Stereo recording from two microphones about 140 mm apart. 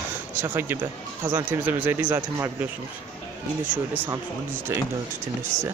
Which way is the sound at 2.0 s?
25° right (ahead or behind).